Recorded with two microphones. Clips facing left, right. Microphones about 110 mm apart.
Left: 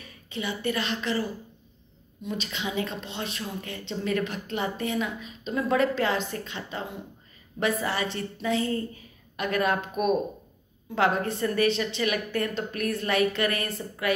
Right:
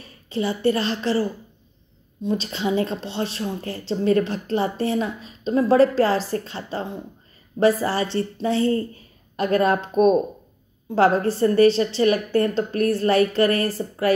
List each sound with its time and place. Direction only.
0.0 s a woman's voice: 30° right (ahead or behind)